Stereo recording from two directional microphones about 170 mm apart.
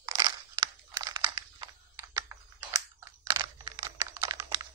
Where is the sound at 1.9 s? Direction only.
20° right (ahead or behind).